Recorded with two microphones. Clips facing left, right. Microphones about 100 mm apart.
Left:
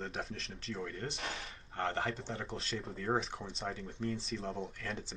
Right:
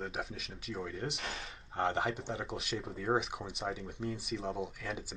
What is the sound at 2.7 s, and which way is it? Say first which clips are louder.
Speech: right 2 dB; 5° right (ahead or behind).